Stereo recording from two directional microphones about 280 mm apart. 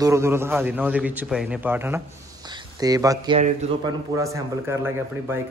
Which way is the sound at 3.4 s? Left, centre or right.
Right.